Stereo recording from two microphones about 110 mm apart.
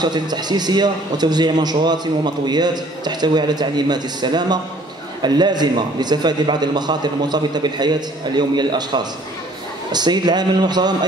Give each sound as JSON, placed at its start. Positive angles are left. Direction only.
{"t": 0.0, "sound": "a man's voice", "side_deg": -40}